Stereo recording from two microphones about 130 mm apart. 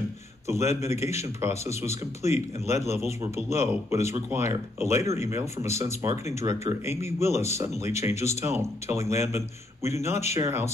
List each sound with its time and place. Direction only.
0.5 s speech: 20° right (ahead or behind)